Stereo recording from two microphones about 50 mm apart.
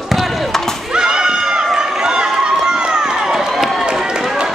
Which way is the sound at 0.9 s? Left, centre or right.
Centre.